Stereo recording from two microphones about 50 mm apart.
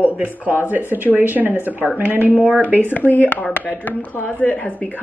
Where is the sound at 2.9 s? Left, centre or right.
Left.